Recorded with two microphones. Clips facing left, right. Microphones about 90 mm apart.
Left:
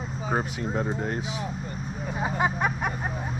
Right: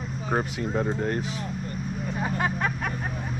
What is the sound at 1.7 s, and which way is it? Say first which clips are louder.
Vehicle: right 2 dB; 15° left (ahead or behind).